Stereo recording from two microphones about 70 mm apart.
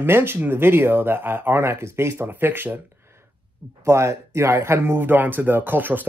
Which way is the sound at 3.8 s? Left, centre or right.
Right.